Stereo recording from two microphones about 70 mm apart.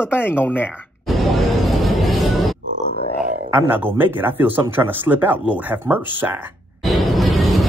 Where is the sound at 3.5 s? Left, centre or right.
Right.